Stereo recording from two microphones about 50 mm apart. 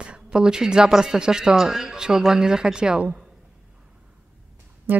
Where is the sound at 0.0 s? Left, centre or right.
Centre.